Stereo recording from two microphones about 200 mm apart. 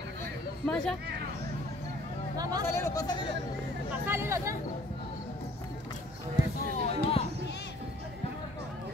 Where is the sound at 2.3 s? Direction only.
20° right (ahead or behind).